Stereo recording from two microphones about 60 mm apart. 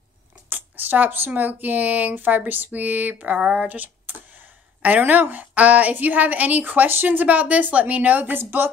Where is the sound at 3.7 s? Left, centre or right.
Right.